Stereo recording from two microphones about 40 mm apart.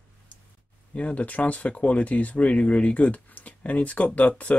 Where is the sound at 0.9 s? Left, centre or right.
Left.